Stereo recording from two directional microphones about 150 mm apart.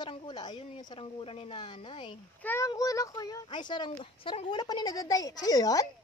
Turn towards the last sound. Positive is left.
turn(degrees=25)  # may be behind; listen again after turning